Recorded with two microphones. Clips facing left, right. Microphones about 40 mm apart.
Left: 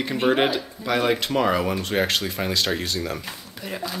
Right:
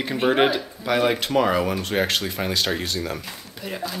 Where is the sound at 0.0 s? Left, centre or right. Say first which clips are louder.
Right 1 dB; centre.